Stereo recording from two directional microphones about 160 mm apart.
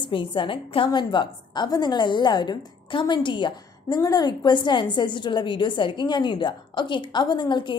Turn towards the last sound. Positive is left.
turn(degrees=30)  # may be behind; listen again after turning